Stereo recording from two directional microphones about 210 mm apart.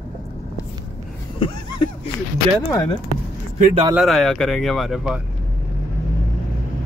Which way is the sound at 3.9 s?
Centre (ahead or behind).